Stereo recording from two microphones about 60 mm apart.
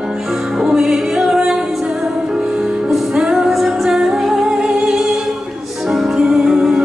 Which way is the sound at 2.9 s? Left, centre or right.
Centre.